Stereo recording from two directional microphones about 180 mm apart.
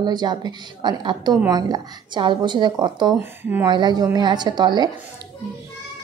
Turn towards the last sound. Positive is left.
turn(degrees=-25)  # may be behind; listen again after turning